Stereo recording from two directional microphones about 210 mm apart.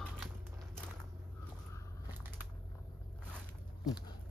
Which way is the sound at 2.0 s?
10° right (ahead or behind).